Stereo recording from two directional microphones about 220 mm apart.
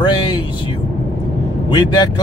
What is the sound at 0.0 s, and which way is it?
Speech, 20° left (ahead or behind).